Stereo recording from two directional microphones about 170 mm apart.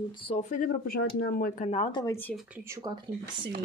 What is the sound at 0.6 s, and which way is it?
Speech, 55° left (ahead or behind).